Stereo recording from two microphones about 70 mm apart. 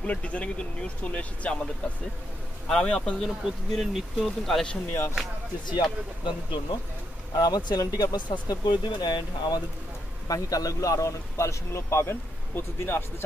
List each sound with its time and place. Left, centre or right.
0.0 s speech: centre
2.7 s speech: centre
3.2 s speech: centre
5.7 s speech: left
7.3 s speech: left
10.2 s speech: left